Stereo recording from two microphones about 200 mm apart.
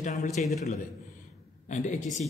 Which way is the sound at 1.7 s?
40° left (ahead or behind).